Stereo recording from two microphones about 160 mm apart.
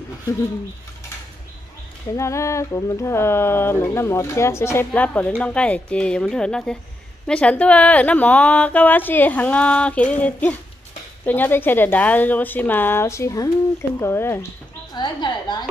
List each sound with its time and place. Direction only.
2.1 s a woman's voice: 20° left (ahead or behind)
15.0 s a woman's voice: 30° left (ahead or behind)